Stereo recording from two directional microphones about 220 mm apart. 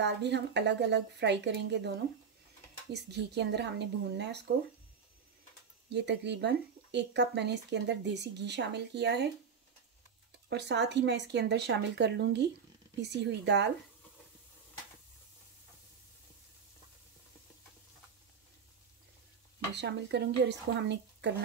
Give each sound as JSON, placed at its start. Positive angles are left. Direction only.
{"t": 0.0, "sound": "speech", "side_deg": -50}
{"t": 5.9, "sound": "speech", "side_deg": -50}
{"t": 10.5, "sound": "speech", "side_deg": -50}
{"t": 19.7, "sound": "speech", "side_deg": -50}